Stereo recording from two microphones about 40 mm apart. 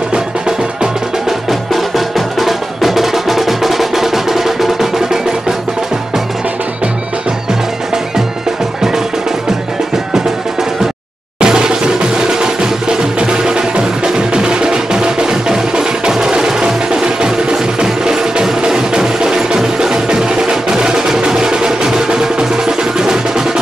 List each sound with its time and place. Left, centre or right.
1.5 s music: centre
11.3 s music: centre